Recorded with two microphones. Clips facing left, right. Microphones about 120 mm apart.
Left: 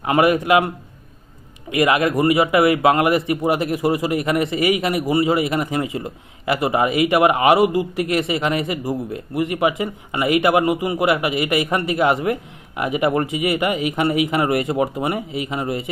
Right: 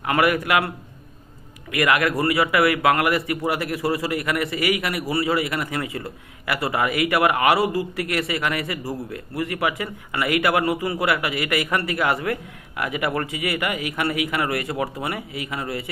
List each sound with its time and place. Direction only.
0.0 s a man's voice: 25° left (ahead or behind)
1.7 s a man's voice: 20° left (ahead or behind)